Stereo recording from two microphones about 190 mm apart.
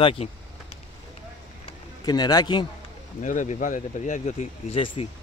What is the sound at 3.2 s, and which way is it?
Speech, 40° left (ahead or behind).